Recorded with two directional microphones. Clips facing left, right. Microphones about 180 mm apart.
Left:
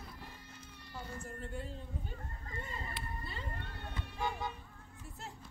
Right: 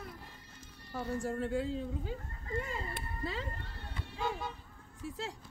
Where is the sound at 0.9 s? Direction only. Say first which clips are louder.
Right 10 dB; 85° right.